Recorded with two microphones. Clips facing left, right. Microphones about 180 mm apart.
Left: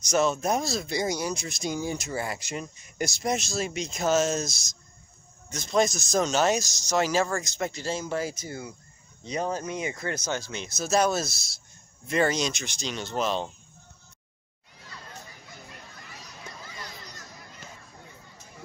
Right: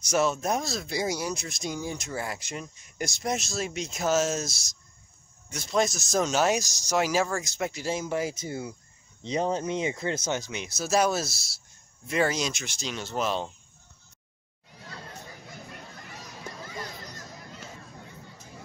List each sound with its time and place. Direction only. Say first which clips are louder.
0.1 s speech: left 1 dB; 5° right (ahead or behind)